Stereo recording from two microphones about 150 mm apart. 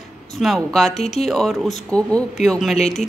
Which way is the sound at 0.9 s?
45° left (ahead or behind).